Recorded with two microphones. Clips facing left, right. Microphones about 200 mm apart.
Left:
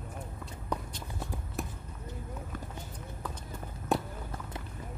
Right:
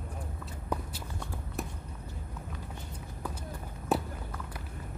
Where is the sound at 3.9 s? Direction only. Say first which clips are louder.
Right 1 dB; centre (ahead or behind).